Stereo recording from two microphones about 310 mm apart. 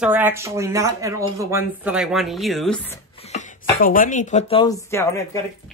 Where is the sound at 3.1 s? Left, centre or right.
Left.